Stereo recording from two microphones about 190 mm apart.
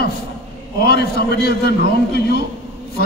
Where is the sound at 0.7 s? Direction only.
60° left (ahead or behind).